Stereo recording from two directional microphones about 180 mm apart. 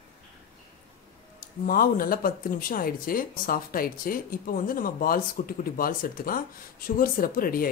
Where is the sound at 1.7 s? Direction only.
50° left (ahead or behind).